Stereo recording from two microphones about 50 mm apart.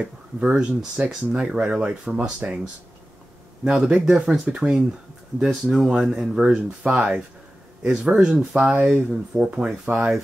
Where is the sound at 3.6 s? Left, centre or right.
Centre.